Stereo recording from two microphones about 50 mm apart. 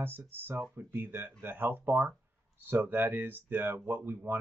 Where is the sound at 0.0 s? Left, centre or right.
Right.